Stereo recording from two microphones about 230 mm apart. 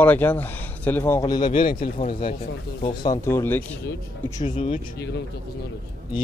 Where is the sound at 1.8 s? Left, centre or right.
Left.